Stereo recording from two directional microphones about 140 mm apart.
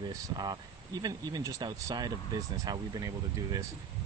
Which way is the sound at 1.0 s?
30° right (ahead or behind).